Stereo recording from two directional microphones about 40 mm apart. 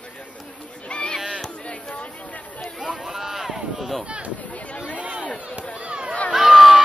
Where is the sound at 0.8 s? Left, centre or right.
Left.